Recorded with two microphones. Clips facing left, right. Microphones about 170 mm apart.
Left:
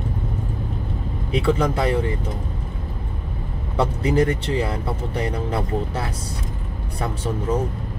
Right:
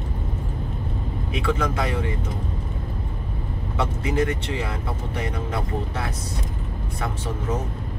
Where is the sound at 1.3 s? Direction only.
30° left (ahead or behind).